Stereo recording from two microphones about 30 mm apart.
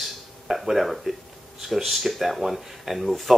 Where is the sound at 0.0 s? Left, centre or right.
Centre.